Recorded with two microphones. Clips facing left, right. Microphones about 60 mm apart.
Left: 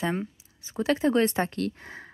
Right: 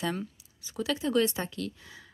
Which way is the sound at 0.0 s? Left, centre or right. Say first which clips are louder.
Left 4 dB; left.